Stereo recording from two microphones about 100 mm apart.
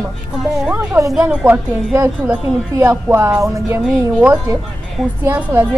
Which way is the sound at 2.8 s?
25° right (ahead or behind).